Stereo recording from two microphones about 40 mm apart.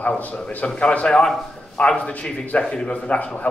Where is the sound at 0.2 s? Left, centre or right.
Left.